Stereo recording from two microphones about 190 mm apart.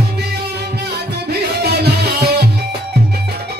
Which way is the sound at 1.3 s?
60° right (ahead or behind).